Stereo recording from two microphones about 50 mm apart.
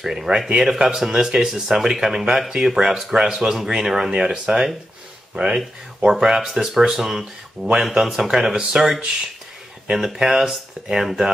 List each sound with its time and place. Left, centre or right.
0.0 s speech: centre
8.0 s speech: centre
9.9 s speech: centre